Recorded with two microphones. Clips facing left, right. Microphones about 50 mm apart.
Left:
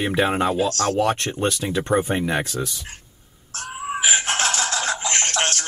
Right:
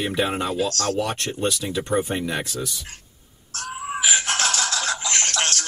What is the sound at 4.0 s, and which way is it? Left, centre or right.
Music, left.